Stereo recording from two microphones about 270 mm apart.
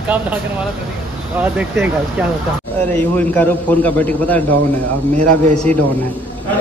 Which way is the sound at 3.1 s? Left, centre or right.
Centre.